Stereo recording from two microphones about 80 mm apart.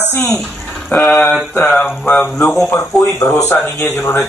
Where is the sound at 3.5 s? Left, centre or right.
Left.